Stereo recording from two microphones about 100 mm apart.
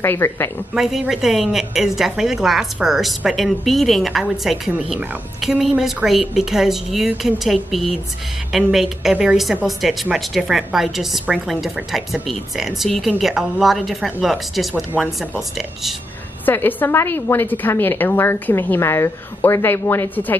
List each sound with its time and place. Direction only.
0.0 s a woman's voice: 20° left (ahead or behind)
0.7 s a woman's voice: 5° right (ahead or behind)
16.4 s a woman's voice: 20° left (ahead or behind)